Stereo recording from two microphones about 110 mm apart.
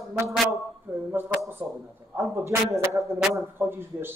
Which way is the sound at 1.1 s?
20° right (ahead or behind).